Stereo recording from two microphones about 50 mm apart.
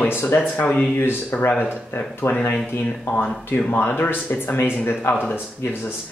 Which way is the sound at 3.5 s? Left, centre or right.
Left.